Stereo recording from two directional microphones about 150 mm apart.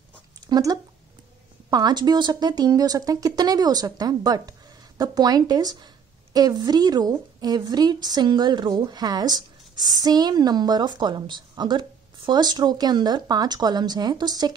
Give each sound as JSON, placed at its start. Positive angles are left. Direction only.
{"t": 0.5, "sound": "a woman's voice", "side_deg": -25}